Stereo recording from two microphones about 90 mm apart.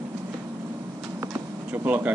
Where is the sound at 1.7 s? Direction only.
20° right (ahead or behind).